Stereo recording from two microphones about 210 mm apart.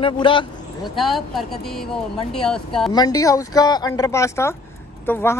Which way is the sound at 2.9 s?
15° left (ahead or behind).